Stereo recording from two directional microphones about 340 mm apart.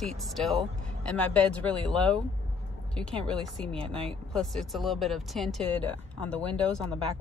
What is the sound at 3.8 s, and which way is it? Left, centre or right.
Speech, centre.